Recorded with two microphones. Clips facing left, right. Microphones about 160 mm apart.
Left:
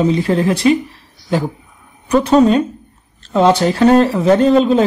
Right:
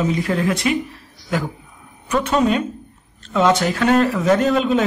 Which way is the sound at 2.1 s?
35° left (ahead or behind).